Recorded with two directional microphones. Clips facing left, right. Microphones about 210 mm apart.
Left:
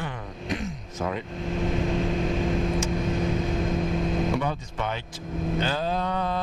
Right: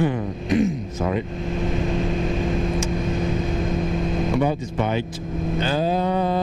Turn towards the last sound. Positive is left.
turn(degrees=-10)  # may be behind; listen again after turning